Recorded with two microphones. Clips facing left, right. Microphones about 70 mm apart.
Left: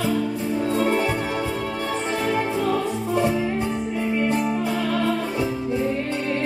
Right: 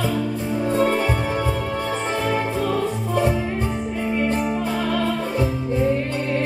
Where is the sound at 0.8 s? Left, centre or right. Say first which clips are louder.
Right 2 dB; right.